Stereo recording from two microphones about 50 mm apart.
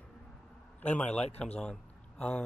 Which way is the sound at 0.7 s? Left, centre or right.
Left.